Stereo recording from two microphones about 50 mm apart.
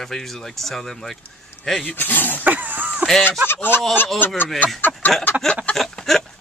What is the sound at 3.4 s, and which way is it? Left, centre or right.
Speech, left.